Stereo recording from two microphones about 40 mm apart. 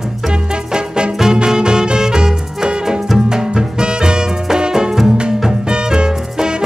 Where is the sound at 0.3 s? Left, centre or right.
Right.